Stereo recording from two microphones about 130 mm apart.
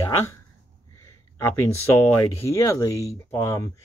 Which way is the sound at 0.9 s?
20° left (ahead or behind).